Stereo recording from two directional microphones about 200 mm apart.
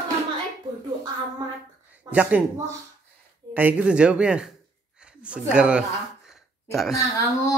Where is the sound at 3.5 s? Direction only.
5° right (ahead or behind).